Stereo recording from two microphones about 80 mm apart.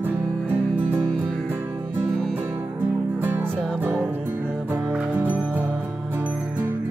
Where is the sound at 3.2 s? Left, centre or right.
Right.